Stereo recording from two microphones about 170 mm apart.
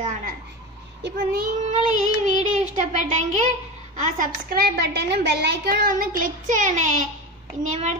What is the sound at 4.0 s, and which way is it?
A woman's voice, 50° right (ahead or behind).